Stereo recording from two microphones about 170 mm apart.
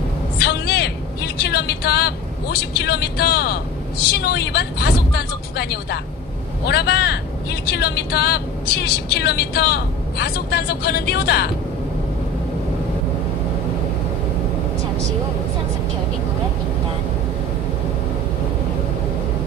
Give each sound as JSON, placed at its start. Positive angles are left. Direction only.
{"t": 0.4, "sound": "vehicle", "side_deg": 70}
{"t": 4.2, "sound": "a woman's voice", "side_deg": 70}